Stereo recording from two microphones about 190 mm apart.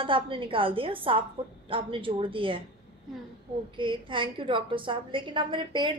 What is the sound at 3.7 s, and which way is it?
A woman's voice, 25° right (ahead or behind).